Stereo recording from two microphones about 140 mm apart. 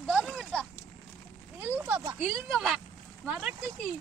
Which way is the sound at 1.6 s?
10° right (ahead or behind).